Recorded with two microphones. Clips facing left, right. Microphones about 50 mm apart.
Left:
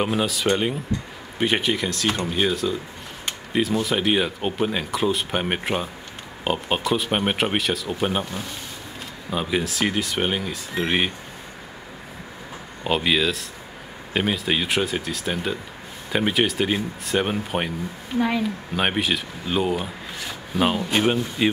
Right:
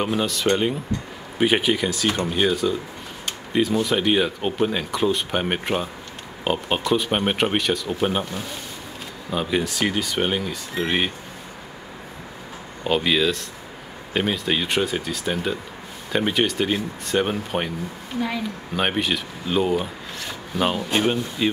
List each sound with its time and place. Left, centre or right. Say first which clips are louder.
0.0 s speech: even; centre
12.8 s speech: right 1 dB; centre
18.8 s speech: even; centre